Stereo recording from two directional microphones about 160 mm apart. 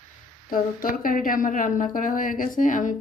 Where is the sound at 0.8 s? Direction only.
60° left (ahead or behind).